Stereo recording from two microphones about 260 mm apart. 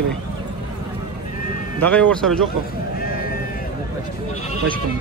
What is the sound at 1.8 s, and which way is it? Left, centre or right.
Speech, centre.